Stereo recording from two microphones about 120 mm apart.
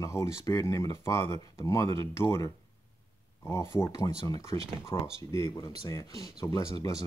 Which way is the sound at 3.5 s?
20° left (ahead or behind).